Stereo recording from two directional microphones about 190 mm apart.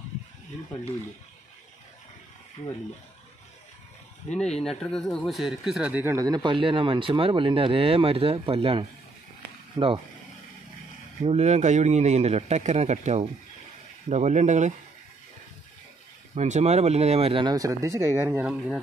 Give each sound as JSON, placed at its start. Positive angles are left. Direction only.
{"t": 4.3, "sound": "speech", "side_deg": 5}
{"t": 9.8, "sound": "speech", "side_deg": -15}
{"t": 11.2, "sound": "speech", "side_deg": -35}
{"t": 16.3, "sound": "speech", "side_deg": -35}